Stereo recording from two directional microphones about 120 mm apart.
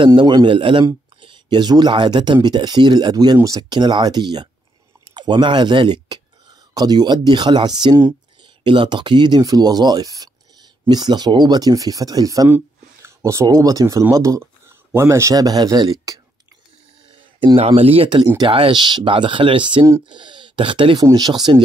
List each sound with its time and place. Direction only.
0.0 s speech: 40° right (ahead or behind)
12.4 s speech: 20° right (ahead or behind)
17.1 s a sound: 40° right (ahead or behind)
17.6 s speech: 55° right (ahead or behind)
21.0 s speech: 35° right (ahead or behind)